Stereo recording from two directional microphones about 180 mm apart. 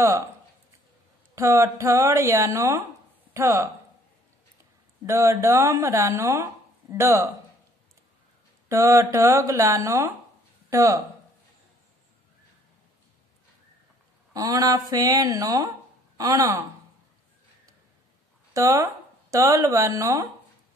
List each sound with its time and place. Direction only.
1.3 s speech: 15° right (ahead or behind)
5.0 s speech: 15° right (ahead or behind)
8.6 s speech: 15° right (ahead or behind)
14.3 s speech: 20° right (ahead or behind)
18.5 s speech: 15° right (ahead or behind)